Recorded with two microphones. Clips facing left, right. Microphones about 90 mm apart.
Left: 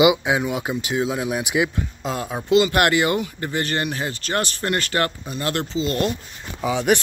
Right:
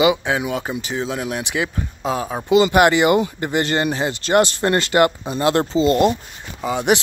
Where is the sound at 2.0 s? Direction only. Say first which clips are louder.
Right 3 dB; 5° right (ahead or behind).